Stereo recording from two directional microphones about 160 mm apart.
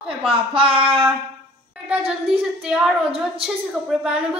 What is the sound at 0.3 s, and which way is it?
Speech, 35° right (ahead or behind).